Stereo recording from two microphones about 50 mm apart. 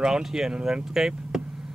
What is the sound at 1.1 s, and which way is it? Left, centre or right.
Vehicle, centre.